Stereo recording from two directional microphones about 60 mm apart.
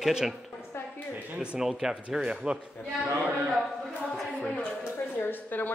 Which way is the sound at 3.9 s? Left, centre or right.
Centre.